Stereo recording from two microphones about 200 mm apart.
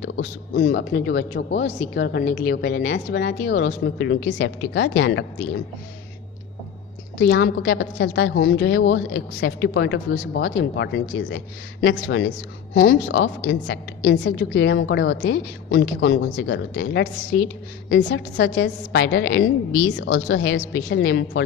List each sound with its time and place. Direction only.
0.0 s a woman's voice: 55° left (ahead or behind)
7.2 s a woman's voice: 65° left (ahead or behind)